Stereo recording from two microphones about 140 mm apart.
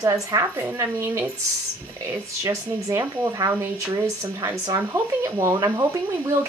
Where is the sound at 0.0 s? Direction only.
25° right (ahead or behind).